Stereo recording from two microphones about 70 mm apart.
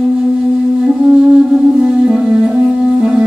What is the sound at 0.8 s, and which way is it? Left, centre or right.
Music, centre.